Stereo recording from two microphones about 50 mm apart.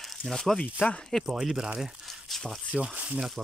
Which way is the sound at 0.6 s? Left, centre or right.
Left.